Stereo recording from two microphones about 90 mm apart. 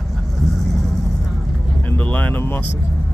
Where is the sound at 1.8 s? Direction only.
20° left (ahead or behind).